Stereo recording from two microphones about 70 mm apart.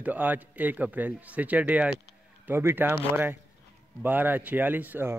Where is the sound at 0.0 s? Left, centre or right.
Right.